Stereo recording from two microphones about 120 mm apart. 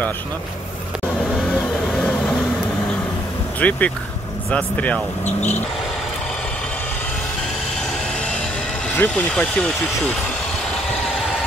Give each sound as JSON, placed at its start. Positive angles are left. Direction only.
{"t": 1.9, "sound": "vehicle", "side_deg": 0}
{"t": 3.5, "sound": "speech", "side_deg": 10}
{"t": 8.9, "sound": "speech", "side_deg": 15}
{"t": 9.3, "sound": "speech", "side_deg": 5}